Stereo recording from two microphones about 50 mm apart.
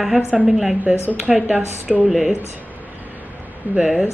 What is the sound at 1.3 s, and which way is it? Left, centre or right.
Speech, centre.